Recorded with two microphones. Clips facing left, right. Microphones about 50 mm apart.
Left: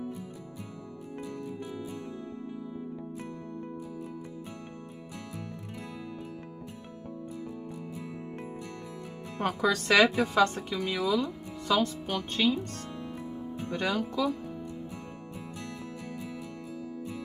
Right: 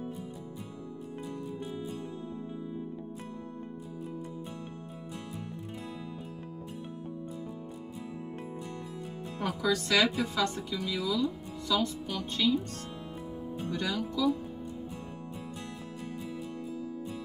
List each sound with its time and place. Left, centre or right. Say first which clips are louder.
9.4 s speech: left 2 dB; left